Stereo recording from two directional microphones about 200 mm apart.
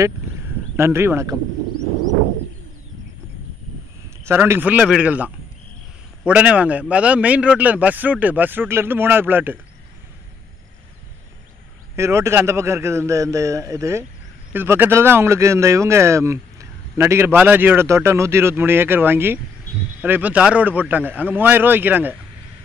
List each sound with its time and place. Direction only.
0.7 s speech: 10° right (ahead or behind)
4.3 s speech: 10° right (ahead or behind)
11.9 s speech: 15° right (ahead or behind)